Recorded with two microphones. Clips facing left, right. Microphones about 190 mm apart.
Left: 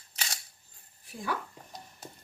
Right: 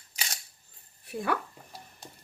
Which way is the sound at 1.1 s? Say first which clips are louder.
Right 7 dB; 60° right (ahead or behind).